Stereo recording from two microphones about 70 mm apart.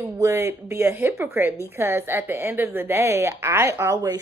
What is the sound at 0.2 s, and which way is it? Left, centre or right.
Speech, right.